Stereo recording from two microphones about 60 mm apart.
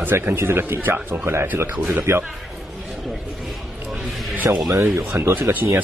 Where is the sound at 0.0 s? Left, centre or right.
Right.